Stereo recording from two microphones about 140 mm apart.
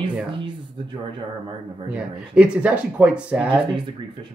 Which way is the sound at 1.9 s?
5° right (ahead or behind).